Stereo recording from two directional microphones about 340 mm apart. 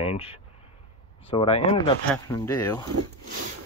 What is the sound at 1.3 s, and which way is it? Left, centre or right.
Speech, centre.